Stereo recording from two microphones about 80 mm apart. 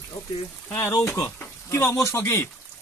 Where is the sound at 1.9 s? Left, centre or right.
Left.